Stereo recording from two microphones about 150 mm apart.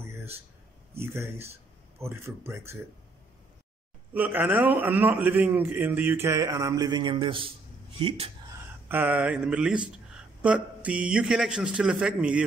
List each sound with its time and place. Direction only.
0.9 s a man's voice: 15° right (ahead or behind)
4.1 s a man's voice: 10° right (ahead or behind); by 8.3 s 35° right (ahead or behind)
8.8 s a man's voice: 10° right (ahead or behind)